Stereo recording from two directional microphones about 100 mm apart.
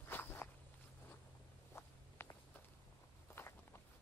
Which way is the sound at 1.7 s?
25° left (ahead or behind).